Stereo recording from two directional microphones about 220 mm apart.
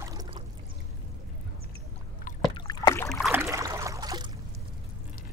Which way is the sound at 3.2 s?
10° right (ahead or behind).